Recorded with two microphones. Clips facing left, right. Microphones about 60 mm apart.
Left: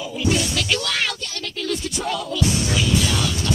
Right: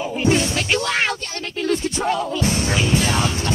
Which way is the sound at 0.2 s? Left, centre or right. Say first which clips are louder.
Right 3 dB; right.